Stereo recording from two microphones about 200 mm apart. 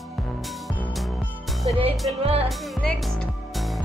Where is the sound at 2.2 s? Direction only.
30° right (ahead or behind).